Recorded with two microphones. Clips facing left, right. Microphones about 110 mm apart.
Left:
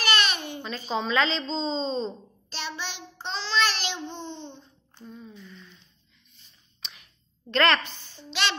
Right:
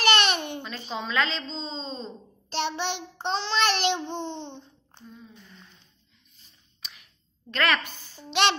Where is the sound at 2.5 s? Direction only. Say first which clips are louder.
Right 7 dB; 60° right (ahead or behind).